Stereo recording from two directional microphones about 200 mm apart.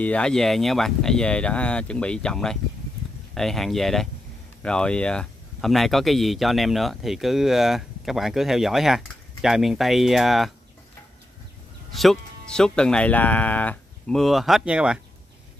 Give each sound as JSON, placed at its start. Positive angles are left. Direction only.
{"t": 0.0, "sound": "speech", "side_deg": 5}
{"t": 11.9, "sound": "speech", "side_deg": 0}